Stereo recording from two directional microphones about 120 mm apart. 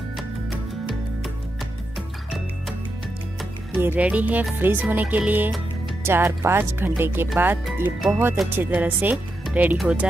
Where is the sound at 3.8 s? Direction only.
15° right (ahead or behind).